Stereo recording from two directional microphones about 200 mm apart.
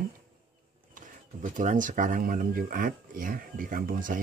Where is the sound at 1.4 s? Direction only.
40° right (ahead or behind).